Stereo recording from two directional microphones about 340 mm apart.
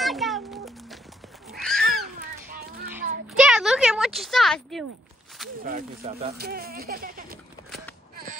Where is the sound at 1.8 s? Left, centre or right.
Right.